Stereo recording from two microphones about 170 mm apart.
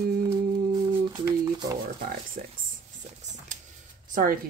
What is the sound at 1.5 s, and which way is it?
Speech, 25° right (ahead or behind).